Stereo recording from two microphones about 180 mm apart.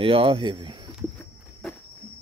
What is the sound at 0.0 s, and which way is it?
Speech, 30° right (ahead or behind).